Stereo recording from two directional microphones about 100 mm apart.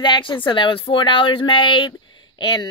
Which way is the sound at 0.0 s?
50° left (ahead or behind).